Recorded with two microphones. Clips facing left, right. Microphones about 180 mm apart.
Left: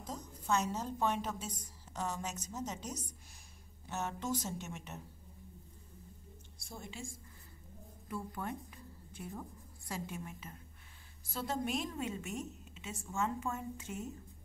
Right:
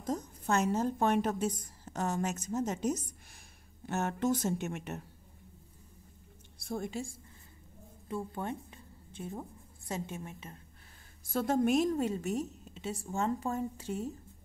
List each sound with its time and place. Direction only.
0.1 s a woman's voice: 50° right (ahead or behind)
6.6 s speech: 60° right (ahead or behind)
6.9 s a woman's voice: 35° right (ahead or behind)
8.1 s a woman's voice: 25° right (ahead or behind)
11.2 s a woman's voice: 50° right (ahead or behind); by 14.1 s 35° right (ahead or behind)